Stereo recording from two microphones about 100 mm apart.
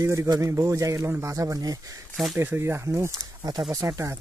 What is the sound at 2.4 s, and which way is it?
A man's voice, 25° right (ahead or behind).